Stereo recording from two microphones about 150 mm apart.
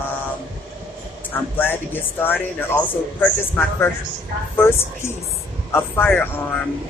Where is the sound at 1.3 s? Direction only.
15° left (ahead or behind).